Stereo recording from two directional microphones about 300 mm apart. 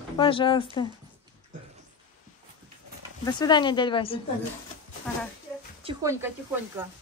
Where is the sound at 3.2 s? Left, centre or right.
Centre.